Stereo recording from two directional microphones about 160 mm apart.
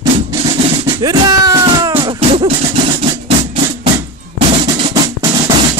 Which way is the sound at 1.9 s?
35° right (ahead or behind).